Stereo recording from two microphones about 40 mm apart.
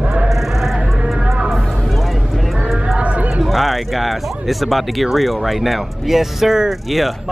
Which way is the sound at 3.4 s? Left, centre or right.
Centre.